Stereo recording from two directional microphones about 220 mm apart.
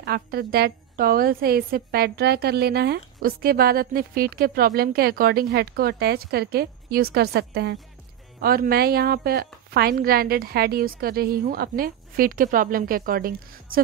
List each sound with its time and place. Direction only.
0.0 s a woman's voice: 45° right (ahead or behind)